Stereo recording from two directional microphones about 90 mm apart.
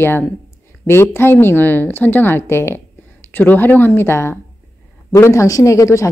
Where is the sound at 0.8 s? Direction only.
25° left (ahead or behind).